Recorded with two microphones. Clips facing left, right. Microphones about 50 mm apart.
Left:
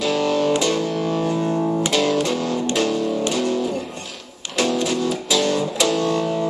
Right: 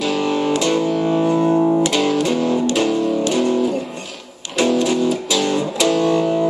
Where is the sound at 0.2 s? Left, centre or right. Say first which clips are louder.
Even; centre.